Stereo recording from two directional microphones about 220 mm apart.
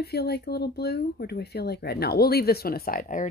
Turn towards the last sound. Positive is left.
turn(degrees=40)  # may be behind; listen again after turning